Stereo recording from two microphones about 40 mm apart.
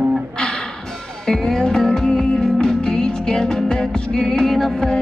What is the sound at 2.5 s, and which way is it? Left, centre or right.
Music, centre.